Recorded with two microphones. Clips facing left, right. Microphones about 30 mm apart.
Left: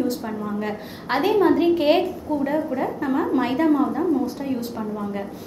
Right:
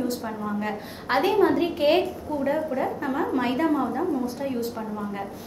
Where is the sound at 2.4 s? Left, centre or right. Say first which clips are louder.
Left 1 dB; centre.